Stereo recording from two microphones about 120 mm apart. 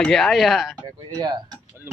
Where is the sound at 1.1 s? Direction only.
35° right (ahead or behind).